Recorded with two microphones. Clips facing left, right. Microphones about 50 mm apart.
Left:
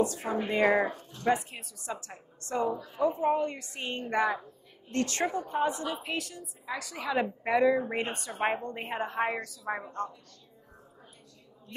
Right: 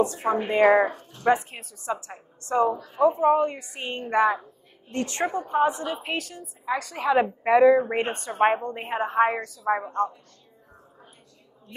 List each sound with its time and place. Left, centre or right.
0.0 s a woman's voice: right
1.4 s a woman's voice: right
2.0 s a woman's voice: right
6.0 s a woman's voice: right
8.5 s a woman's voice: centre
9.4 s a woman's voice: right